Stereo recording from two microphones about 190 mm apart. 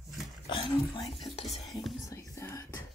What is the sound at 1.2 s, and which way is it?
Stir, 30° left (ahead or behind).